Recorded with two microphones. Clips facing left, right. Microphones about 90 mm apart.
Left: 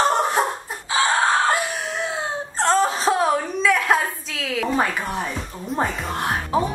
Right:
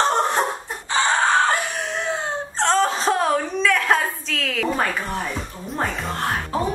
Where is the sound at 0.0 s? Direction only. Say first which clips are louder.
Even; 5° left (ahead or behind).